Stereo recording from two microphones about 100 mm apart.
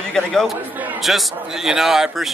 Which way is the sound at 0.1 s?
5° left (ahead or behind).